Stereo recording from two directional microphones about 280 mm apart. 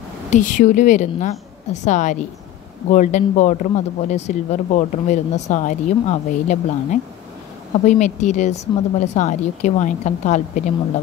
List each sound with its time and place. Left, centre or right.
0.3 s speech: left